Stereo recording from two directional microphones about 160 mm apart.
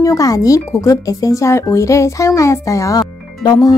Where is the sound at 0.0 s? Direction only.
20° left (ahead or behind).